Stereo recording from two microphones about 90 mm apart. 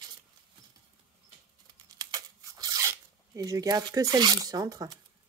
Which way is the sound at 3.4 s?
40° right (ahead or behind).